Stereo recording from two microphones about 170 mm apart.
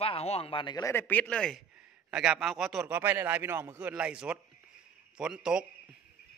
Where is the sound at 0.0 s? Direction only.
35° left (ahead or behind).